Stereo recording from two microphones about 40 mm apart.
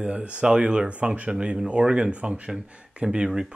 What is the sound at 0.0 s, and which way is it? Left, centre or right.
Speech, right.